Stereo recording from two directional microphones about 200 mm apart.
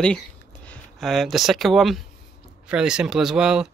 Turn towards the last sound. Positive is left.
turn(degrees=-5)  # may be behind; listen again after turning